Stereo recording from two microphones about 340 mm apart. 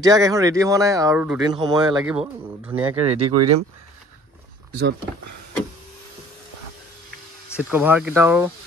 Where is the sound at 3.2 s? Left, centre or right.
Right.